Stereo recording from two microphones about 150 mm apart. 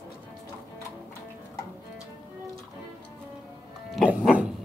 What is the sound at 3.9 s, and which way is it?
Music, 5° right (ahead or behind).